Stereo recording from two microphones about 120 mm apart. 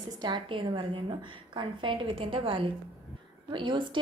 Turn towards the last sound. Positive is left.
turn(degrees=-40)  # may be behind; listen again after turning